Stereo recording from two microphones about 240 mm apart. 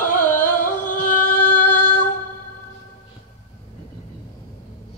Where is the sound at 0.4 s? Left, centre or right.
Left.